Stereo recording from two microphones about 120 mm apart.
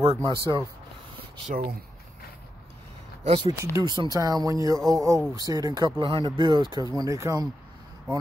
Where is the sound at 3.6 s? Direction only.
25° right (ahead or behind).